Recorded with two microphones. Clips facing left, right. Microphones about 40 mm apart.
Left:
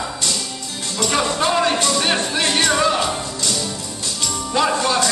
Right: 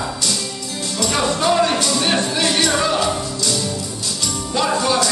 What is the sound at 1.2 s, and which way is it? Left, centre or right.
Music, centre.